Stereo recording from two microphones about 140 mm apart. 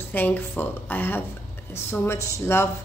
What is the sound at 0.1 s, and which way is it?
A woman's voice, 15° left (ahead or behind).